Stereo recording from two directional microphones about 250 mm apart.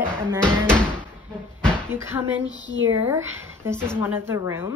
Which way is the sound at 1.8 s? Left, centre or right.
Centre.